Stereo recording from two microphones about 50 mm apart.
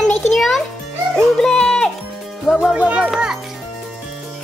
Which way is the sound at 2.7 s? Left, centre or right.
Right.